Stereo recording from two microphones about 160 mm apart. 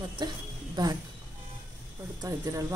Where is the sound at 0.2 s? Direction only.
25° right (ahead or behind).